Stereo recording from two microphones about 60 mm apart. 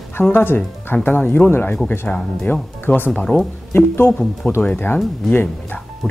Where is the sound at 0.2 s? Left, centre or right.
Left; by 3.4 s centre.